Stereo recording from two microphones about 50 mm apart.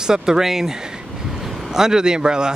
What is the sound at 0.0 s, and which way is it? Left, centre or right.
Speech, centre.